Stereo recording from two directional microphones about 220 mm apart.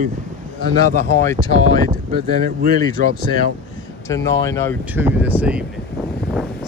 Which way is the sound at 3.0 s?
40° right (ahead or behind).